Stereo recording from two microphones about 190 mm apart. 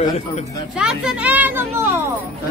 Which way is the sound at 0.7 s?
5° right (ahead or behind).